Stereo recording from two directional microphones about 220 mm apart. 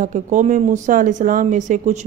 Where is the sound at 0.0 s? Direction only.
35° right (ahead or behind).